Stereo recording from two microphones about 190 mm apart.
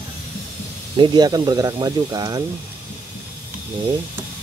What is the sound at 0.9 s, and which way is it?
Speech, 25° right (ahead or behind).